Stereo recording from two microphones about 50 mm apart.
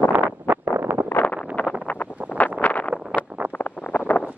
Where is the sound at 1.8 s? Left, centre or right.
Left.